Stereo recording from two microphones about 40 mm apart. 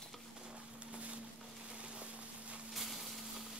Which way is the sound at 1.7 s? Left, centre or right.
Right.